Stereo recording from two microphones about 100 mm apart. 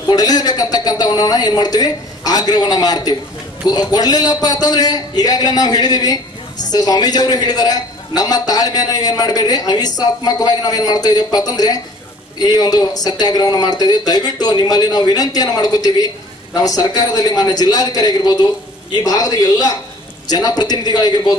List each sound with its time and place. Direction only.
0.1 s a man's voice: 40° left (ahead or behind)